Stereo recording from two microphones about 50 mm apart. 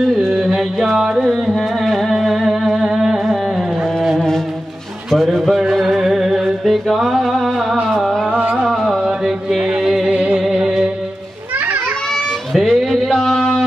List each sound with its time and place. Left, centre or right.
0.4 s music: centre
8.3 s music: right
8.6 s music: centre
10.1 s music: right
11.5 s children playing: right
12.5 s music: centre
13.1 s a sound: centre